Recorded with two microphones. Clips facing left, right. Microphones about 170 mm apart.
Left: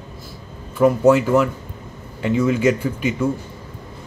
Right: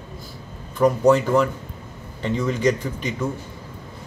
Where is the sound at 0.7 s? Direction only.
5° left (ahead or behind).